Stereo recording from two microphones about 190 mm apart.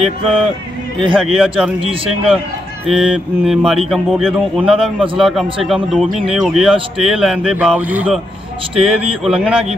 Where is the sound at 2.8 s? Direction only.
5° right (ahead or behind).